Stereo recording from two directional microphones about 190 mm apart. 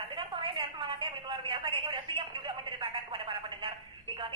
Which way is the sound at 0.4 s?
25° right (ahead or behind).